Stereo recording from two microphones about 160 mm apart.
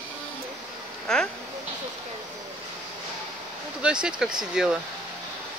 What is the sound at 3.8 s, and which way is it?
Speech, 5° right (ahead or behind).